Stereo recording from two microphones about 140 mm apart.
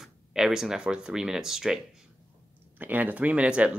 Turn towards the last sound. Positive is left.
turn(degrees=-10)  # may be behind; listen again after turning